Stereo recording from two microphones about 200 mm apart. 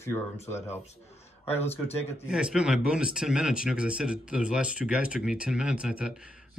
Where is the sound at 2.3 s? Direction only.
5° right (ahead or behind).